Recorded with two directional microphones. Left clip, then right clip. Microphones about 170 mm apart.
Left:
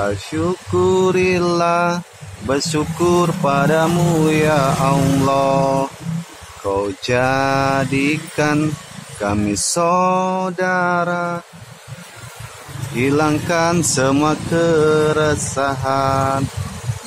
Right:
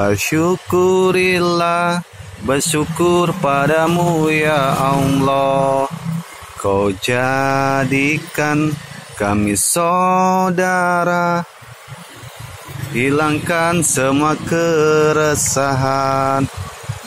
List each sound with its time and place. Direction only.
0.0 s speech: 30° right (ahead or behind)
0.8 s mantra: 15° right (ahead or behind)
2.4 s speech: 15° right (ahead or behind)
9.2 s mantra: 15° right (ahead or behind); by 11.4 s 35° right (ahead or behind)
12.9 s mantra: 5° right (ahead or behind); by 16.4 s 20° right (ahead or behind)